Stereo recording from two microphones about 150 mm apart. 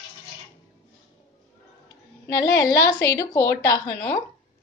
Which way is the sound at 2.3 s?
20° left (ahead or behind).